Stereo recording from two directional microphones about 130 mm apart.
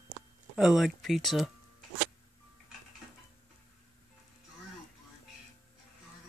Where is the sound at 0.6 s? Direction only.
5° right (ahead or behind).